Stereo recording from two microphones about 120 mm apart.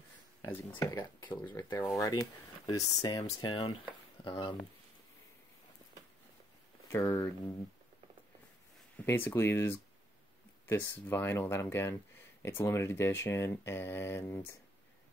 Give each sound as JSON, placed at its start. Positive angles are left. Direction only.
{"t": 0.9, "sound": "speech", "side_deg": 35}
{"t": 1.5, "sound": "speech", "side_deg": 25}
{"t": 6.9, "sound": "speech", "side_deg": 20}
{"t": 8.9, "sound": "speech", "side_deg": 15}